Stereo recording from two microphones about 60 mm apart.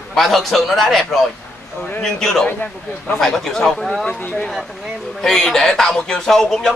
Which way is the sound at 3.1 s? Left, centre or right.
Centre.